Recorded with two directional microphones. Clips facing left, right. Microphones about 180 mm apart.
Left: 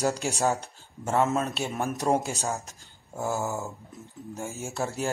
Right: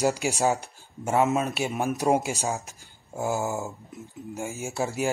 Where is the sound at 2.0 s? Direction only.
5° right (ahead or behind).